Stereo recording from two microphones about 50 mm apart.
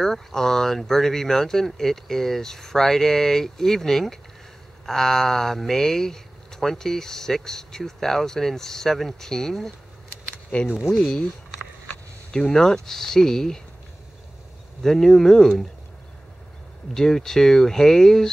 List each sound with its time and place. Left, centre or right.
0.0 s speech: centre
10.5 s speech: left
12.3 s speech: centre
14.8 s speech: centre
16.9 s speech: centre